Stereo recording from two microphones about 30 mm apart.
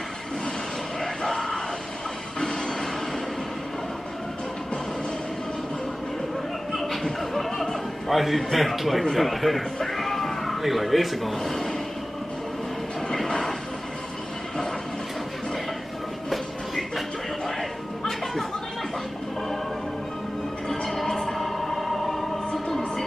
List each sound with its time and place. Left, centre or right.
1.0 s a sound: centre
2.4 s train: centre
6.7 s chuckle: centre
8.1 s a man's voice: centre
9.9 s music: centre
11.3 s speech: centre
16.3 s train: centre
17.6 s music: centre
20.6 s music: centre